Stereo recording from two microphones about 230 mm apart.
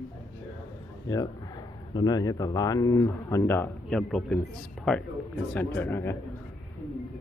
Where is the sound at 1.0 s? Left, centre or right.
Centre.